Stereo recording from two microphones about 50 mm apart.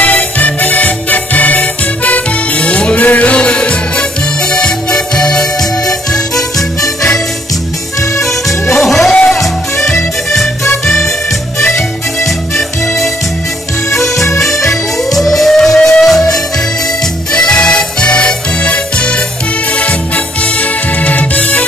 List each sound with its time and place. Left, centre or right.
0.0 s music: left; by 6.4 s centre
8.7 s music: centre
11.6 s music: left
14.1 s music: left
15.1 s music: centre
17.3 s music: centre
21.0 s music: left